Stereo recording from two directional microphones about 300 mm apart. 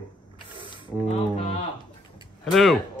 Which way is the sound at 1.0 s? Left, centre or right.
Centre.